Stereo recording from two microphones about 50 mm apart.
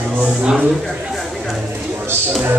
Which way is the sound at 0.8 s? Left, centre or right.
Centre.